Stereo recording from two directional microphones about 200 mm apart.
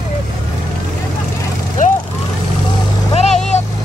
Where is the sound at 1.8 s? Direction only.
40° left (ahead or behind).